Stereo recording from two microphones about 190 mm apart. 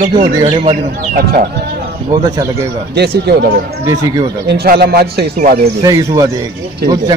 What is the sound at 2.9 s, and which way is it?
Speech, 60° right (ahead or behind).